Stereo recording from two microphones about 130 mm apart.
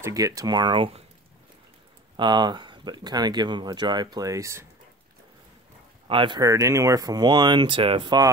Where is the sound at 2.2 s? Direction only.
35° right (ahead or behind).